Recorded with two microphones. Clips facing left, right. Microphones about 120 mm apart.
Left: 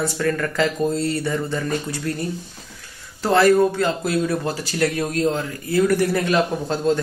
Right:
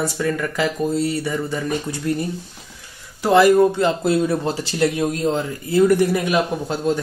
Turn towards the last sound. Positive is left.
turn(degrees=-10)  # may be behind; listen again after turning